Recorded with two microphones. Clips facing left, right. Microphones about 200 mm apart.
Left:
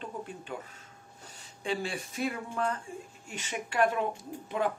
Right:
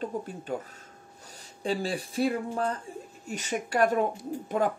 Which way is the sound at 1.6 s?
35° right (ahead or behind).